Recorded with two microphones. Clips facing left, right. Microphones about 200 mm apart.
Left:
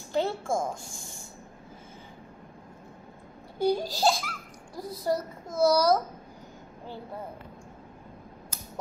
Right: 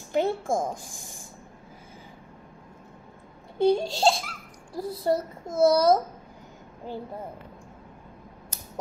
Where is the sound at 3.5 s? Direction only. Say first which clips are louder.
Right 4 dB; 25° right (ahead or behind).